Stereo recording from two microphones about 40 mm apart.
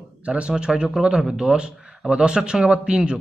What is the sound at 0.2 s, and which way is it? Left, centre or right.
A man's voice, right.